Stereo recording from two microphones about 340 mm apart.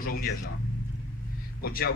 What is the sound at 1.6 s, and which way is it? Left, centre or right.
Speech, left.